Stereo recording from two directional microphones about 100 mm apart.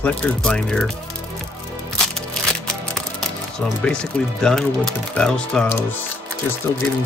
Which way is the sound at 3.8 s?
10° left (ahead or behind).